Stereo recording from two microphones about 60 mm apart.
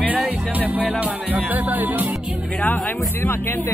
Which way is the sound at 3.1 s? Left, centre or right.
Left.